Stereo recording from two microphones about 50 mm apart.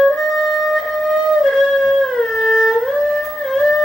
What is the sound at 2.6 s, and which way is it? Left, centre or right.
Music, centre.